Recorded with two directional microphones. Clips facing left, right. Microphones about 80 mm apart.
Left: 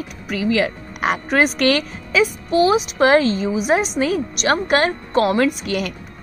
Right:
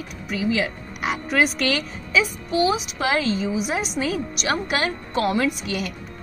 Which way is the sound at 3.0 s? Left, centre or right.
Left.